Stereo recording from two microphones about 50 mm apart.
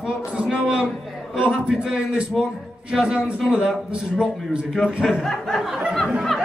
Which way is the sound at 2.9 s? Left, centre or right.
Centre.